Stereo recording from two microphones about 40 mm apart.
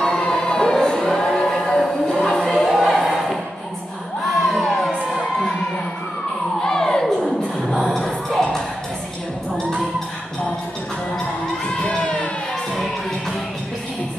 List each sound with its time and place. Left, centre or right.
0.0 s music: centre
2.7 s a sound: centre
4.3 s crowd: centre
6.6 s a sound: centre
7.6 s music: centre
11.8 s crowd: left